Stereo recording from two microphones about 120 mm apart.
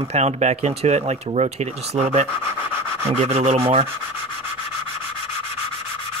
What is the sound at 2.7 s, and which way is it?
Dog, 20° right (ahead or behind).